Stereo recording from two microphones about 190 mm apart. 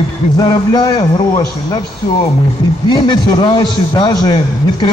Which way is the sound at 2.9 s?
25° left (ahead or behind).